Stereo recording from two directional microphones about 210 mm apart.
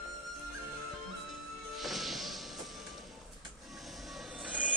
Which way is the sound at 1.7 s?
Centre (ahead or behind).